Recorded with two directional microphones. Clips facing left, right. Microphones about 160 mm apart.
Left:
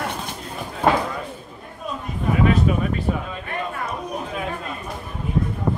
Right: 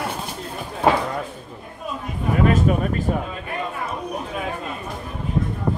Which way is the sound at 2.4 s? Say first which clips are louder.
Right 1 dB; 45° right (ahead or behind).